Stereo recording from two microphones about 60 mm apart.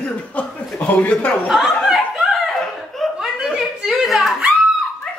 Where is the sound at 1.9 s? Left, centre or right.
Centre.